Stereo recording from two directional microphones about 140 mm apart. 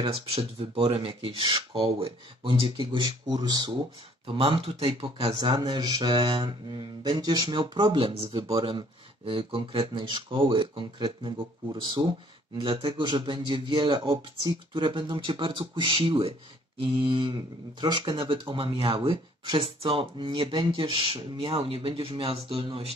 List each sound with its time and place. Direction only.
0.0 s speech: 45° right (ahead or behind)
4.4 s speech: 45° right (ahead or behind)